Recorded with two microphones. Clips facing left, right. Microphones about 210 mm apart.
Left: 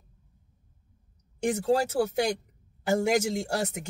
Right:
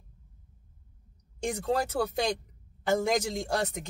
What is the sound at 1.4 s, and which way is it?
A man's voice, 5° left (ahead or behind).